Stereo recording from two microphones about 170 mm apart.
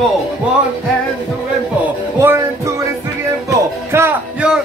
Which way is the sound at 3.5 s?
15° right (ahead or behind).